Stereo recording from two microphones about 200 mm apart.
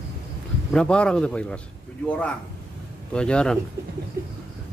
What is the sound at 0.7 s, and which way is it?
A man's voice, 5° left (ahead or behind).